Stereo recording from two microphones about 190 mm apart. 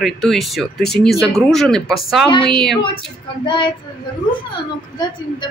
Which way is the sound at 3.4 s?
25° left (ahead or behind).